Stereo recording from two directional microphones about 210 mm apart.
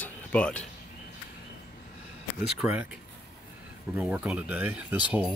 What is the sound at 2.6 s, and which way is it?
Speech, 10° right (ahead or behind).